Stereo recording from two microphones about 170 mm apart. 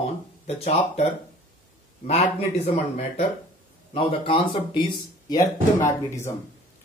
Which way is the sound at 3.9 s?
30° left (ahead or behind).